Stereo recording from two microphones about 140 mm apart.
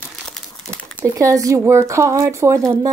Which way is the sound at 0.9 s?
25° right (ahead or behind).